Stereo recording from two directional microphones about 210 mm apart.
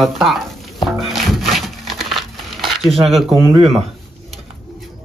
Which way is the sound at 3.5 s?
30° right (ahead or behind).